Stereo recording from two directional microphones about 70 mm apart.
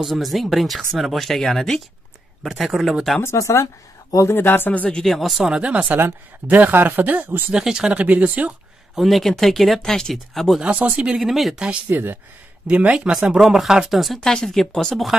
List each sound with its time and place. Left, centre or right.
0.0 s speech: centre
3.2 s speech: left
4.3 s speech: left
5.0 s speech: centre
5.5 s speech: centre
7.5 s speech: centre
8.9 s speech: centre
10.6 s speech: centre
11.1 s speech: centre
11.9 s speech: right
12.6 s speech: centre
13.1 s speech: centre